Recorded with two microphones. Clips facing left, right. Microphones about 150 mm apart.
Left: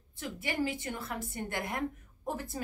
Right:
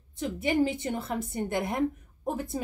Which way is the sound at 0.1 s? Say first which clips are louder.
Right 9 dB; 20° right (ahead or behind).